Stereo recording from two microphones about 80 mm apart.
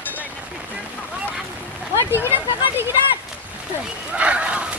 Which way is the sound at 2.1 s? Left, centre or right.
Right.